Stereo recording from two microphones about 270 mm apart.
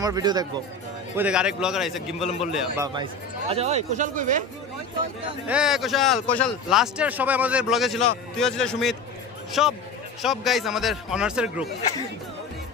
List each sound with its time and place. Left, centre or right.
0.0 s speech: centre
1.1 s a man's voice: centre; by 4.4 s right
5.5 s a man's voice: centre